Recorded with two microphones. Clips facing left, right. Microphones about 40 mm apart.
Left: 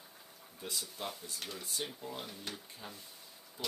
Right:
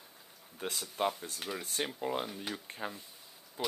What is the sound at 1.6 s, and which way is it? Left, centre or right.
Speech, right.